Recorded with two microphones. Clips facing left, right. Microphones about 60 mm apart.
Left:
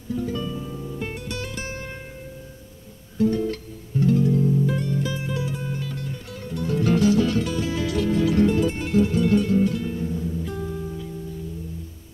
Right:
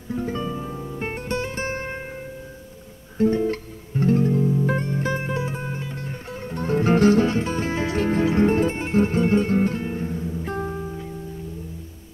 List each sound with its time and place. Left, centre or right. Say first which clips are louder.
0.1 s music: right 1 dB; right
3.2 s music: right 2 dB; right
10.8 s music: right 1 dB; right